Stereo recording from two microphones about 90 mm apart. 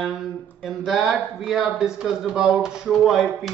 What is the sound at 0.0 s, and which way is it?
Speech, centre (ahead or behind).